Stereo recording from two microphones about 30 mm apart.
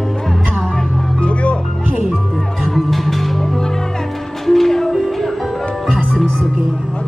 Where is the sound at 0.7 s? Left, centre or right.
Left.